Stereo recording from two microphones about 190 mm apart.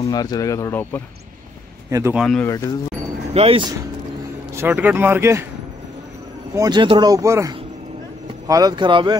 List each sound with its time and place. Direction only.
0.1 s speech: 20° left (ahead or behind)
1.9 s speech: 15° right (ahead or behind)
2.1 s speech: centre (ahead or behind)
2.4 s speech: 15° left (ahead or behind)
3.3 s speech: 30° right (ahead or behind)
4.6 s speech: 10° right (ahead or behind)
6.5 s speech: 20° right (ahead or behind)